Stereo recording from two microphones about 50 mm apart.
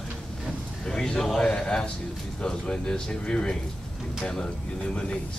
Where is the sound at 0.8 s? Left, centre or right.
Centre.